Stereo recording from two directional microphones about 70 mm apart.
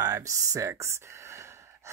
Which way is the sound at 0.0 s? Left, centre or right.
Right.